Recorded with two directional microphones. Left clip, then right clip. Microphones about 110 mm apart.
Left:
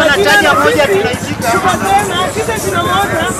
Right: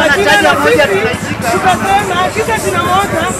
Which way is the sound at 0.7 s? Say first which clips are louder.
Right 1 dB; 25° left (ahead or behind).